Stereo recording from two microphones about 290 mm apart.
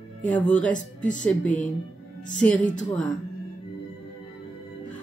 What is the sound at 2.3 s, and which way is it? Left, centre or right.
Speech, centre.